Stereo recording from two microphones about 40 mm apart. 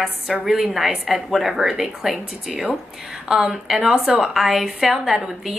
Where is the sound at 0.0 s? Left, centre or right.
Centre.